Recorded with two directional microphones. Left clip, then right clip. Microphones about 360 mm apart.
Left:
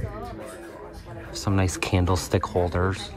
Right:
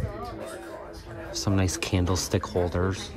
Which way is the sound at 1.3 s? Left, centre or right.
Centre.